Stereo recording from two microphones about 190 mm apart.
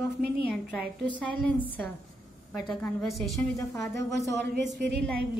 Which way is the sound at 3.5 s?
15° left (ahead or behind).